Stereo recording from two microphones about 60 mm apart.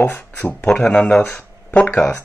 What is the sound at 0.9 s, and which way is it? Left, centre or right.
Speech, centre.